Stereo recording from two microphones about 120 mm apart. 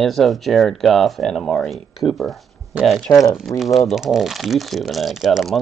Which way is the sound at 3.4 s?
Centre (ahead or behind).